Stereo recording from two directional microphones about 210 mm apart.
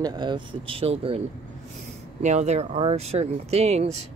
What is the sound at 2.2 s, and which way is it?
Speech, 35° right (ahead or behind).